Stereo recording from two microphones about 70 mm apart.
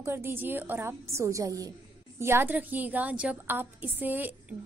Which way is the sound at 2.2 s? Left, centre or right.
Right.